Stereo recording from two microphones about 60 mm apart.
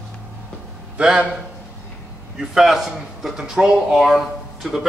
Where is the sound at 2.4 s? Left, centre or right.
Centre.